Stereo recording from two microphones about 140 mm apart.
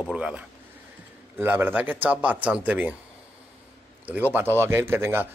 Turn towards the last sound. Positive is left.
turn(degrees=-15)  # may be behind; listen again after turning